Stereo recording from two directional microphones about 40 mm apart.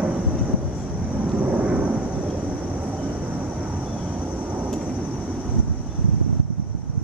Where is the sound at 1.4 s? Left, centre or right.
Right.